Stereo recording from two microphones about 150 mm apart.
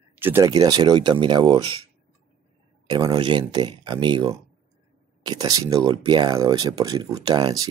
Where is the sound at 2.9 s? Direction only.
25° right (ahead or behind).